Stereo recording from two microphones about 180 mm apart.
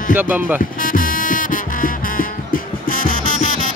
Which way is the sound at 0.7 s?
50° left (ahead or behind).